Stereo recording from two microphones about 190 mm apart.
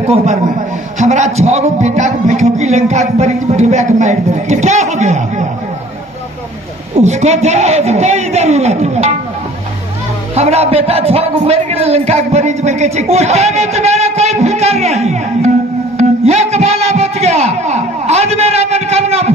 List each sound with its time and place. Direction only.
0.0 s a man's voice: 35° right (ahead or behind)
7.0 s a man's voice: 35° right (ahead or behind)
10.3 s a man's voice: 35° right (ahead or behind)